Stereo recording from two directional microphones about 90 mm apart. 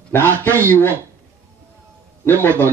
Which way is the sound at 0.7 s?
25° left (ahead or behind).